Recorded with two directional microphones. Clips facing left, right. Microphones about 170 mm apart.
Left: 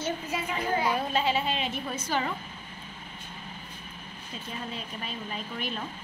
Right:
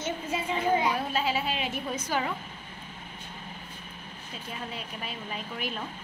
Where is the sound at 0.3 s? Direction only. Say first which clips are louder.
Right 1 dB; 25° right (ahead or behind).